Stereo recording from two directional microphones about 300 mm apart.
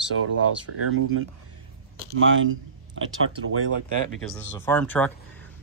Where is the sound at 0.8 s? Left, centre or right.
Right.